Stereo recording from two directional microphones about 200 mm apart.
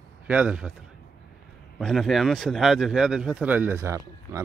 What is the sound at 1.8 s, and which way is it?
A man's voice, centre (ahead or behind).